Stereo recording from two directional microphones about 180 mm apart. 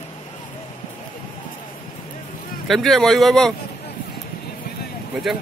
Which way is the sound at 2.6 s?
Centre (ahead or behind).